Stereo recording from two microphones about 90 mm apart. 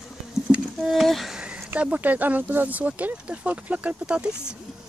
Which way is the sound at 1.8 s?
15° right (ahead or behind).